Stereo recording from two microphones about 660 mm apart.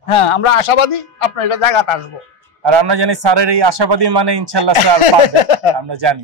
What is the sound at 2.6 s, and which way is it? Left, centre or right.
A man's voice, right.